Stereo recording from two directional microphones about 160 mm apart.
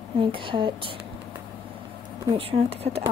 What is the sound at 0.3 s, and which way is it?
Speech, 30° right (ahead or behind).